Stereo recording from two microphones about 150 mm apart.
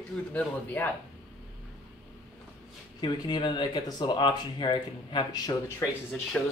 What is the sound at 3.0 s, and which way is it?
Speech, 30° left (ahead or behind).